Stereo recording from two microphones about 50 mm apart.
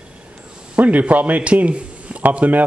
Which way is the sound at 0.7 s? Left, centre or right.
Right.